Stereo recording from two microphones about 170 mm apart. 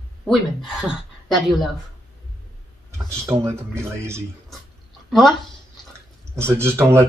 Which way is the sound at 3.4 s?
15° right (ahead or behind).